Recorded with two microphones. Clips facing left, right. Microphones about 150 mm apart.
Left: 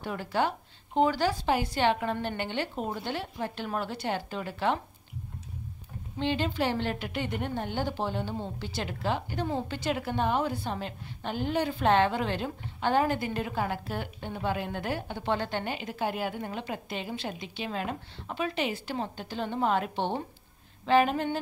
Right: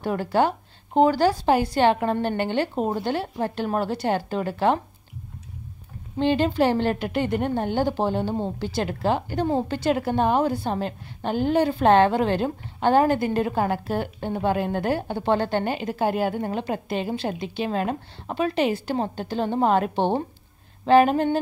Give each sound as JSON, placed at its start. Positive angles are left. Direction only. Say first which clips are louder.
{"t": 0.0, "sound": "a woman's voice", "louder": "right 7 dB", "side_deg": -50}
{"t": 6.1, "sound": "a woman's voice", "louder": "right 8 dB", "side_deg": -45}